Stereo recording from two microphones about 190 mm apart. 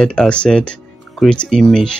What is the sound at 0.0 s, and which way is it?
Speech, 5° left (ahead or behind).